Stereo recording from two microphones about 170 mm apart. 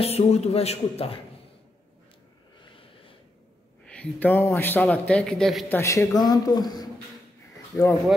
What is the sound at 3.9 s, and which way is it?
A man's voice, 10° left (ahead or behind).